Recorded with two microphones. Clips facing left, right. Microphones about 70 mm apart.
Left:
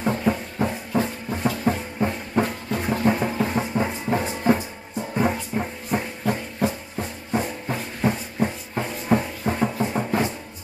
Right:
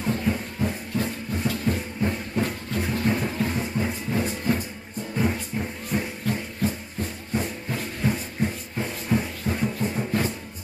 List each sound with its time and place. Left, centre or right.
0.0 s music: left
5.2 s music: left